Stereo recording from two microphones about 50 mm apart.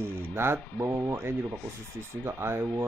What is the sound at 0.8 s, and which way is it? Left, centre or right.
Speech, right.